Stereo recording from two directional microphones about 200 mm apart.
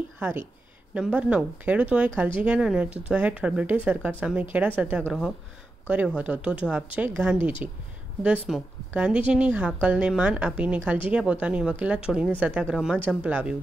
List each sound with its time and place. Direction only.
0.2 s a woman's voice: 10° right (ahead or behind)